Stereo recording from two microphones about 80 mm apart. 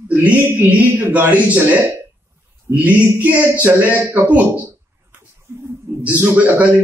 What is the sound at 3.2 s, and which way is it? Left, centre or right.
A man's voice, centre.